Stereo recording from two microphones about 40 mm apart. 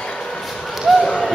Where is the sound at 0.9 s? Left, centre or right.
Centre.